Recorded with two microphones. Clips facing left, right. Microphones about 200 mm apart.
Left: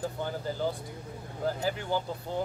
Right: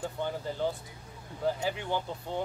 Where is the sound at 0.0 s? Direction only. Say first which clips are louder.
Left 1 dB; centre (ahead or behind).